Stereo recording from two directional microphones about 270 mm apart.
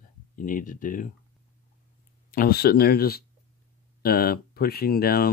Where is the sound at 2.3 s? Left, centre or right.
Left.